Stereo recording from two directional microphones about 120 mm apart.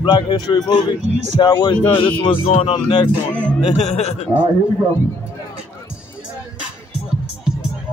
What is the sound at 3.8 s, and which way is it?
Speech, 65° left (ahead or behind).